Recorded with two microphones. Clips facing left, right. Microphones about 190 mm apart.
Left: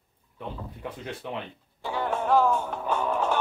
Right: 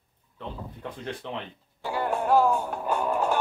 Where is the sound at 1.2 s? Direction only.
10° left (ahead or behind).